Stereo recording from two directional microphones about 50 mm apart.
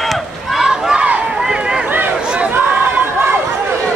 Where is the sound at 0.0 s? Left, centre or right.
Centre.